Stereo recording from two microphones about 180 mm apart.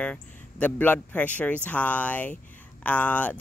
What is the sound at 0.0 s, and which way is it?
Speech, 10° left (ahead or behind).